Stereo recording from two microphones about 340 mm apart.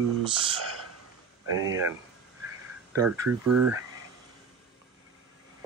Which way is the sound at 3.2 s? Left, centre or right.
Right.